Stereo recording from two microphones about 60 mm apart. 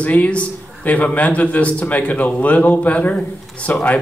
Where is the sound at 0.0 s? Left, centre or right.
Left.